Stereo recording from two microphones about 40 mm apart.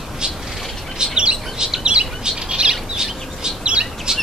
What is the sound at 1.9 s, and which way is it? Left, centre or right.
Squawk, right.